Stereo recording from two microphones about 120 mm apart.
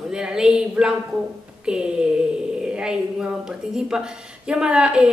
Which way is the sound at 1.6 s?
5° right (ahead or behind).